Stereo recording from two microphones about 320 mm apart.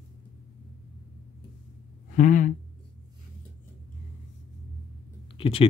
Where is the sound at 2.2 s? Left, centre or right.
Left.